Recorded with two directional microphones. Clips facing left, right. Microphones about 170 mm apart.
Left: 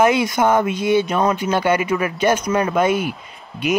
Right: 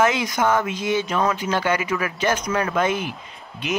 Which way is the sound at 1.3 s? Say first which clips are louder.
Left 4 dB; 15° left (ahead or behind).